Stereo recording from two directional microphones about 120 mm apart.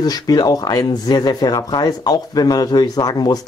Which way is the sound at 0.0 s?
35° left (ahead or behind).